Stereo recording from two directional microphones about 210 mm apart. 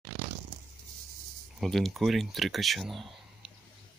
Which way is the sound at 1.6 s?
Centre (ahead or behind).